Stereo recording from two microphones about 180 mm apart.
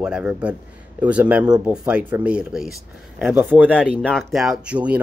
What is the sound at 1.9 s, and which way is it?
Speech, 10° right (ahead or behind).